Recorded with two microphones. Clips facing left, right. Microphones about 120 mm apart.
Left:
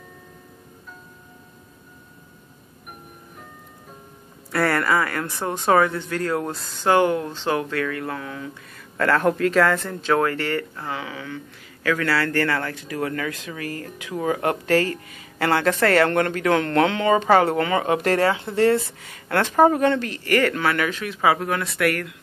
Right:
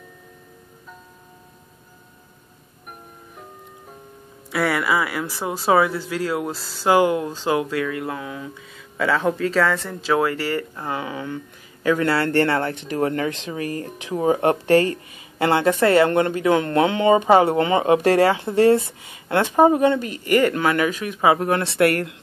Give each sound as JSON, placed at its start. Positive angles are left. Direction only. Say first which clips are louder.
{"t": 4.5, "sound": "speech", "louder": "even", "side_deg": 0}
{"t": 8.9, "sound": "speech", "louder": "left 1 dB", "side_deg": -5}